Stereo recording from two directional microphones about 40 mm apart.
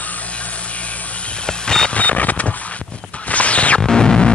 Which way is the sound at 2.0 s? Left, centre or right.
Left.